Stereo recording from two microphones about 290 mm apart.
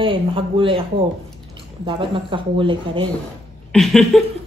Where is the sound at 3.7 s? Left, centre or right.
Centre.